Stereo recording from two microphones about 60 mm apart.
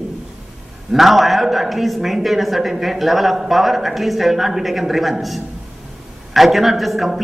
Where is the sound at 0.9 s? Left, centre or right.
Centre.